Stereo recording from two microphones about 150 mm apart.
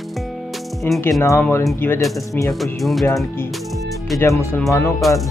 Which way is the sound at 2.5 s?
Centre (ahead or behind).